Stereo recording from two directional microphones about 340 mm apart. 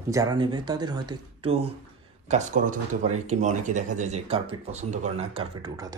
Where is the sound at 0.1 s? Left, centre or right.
Centre.